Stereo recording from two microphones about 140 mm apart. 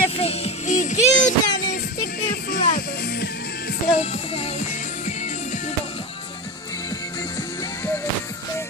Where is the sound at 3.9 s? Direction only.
50° left (ahead or behind).